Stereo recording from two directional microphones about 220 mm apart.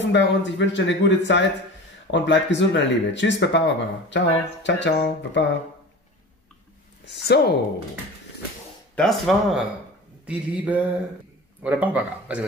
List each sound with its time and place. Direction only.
0.0 s speech: 55° left (ahead or behind)
7.1 s speech: 50° left (ahead or behind)
8.9 s speech: centre (ahead or behind)